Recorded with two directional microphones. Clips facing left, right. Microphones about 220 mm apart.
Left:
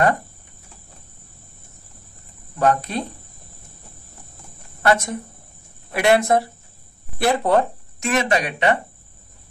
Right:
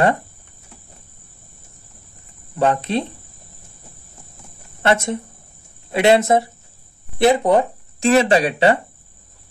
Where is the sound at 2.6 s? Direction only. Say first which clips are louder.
Right 2 dB; 25° right (ahead or behind).